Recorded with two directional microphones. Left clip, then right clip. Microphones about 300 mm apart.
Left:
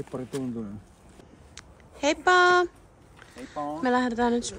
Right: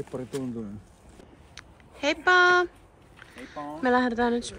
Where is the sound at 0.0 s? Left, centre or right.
Centre.